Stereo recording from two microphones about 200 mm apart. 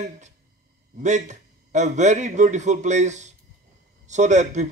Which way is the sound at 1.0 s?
35° right (ahead or behind).